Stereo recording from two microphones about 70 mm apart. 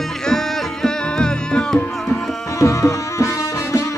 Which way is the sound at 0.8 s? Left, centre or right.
Centre.